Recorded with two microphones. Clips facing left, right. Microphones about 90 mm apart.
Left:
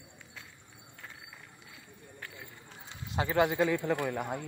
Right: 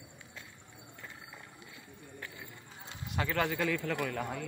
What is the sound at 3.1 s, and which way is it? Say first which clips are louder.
A man's voice: left 5 dB; 20° left (ahead or behind).